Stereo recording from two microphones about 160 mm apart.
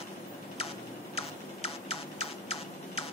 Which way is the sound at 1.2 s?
40° left (ahead or behind).